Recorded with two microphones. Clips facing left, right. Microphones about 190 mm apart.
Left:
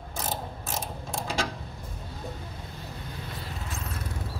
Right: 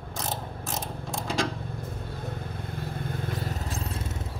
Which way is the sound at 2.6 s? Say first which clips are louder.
Right 6 dB; 55° right (ahead or behind).